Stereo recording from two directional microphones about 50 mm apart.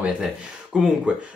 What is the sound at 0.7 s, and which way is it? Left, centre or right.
Music, centre.